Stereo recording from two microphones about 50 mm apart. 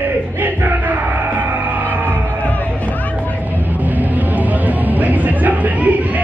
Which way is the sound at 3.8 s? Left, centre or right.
Right.